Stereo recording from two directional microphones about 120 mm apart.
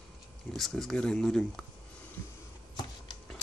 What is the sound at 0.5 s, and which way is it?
Speech, centre (ahead or behind).